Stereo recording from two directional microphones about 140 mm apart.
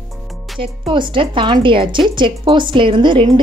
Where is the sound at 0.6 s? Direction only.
35° right (ahead or behind).